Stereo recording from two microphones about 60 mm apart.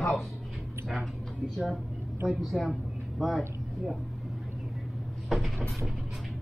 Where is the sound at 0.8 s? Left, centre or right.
Centre.